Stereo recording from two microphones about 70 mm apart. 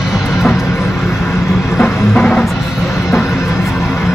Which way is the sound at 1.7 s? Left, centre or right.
Centre.